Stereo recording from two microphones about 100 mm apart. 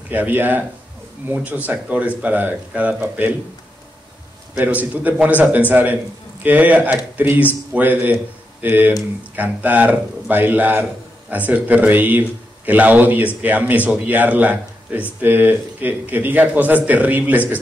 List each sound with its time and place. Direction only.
0.1 s speech: 20° right (ahead or behind)
4.6 s speech: 15° right (ahead or behind)